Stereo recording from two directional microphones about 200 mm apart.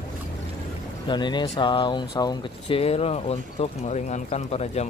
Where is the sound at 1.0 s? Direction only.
20° left (ahead or behind).